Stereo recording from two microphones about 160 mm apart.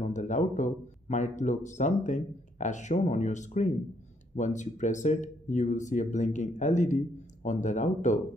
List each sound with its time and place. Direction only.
0.0 s speech: 50° left (ahead or behind)